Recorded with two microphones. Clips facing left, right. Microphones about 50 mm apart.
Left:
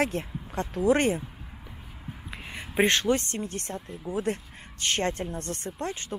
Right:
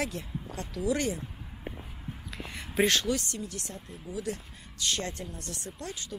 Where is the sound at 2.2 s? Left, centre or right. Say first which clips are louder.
Left 2 dB; left.